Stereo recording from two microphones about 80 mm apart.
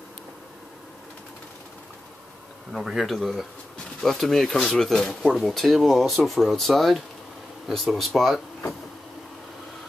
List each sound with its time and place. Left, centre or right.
2.7 s speech: centre